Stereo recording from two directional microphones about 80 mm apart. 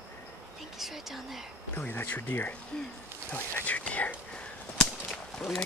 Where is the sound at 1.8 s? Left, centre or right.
Left.